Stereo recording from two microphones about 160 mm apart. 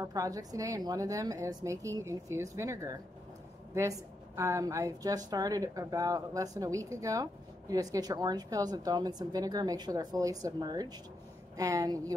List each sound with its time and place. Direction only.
0.0 s speech: 20° right (ahead or behind)
4.4 s speech: 20° right (ahead or behind)